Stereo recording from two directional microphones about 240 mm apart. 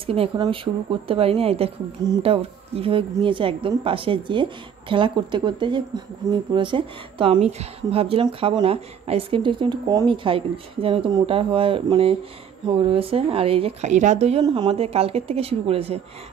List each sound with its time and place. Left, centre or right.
0.0 s speech: right